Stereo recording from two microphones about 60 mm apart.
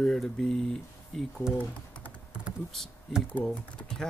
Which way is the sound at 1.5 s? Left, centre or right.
Left.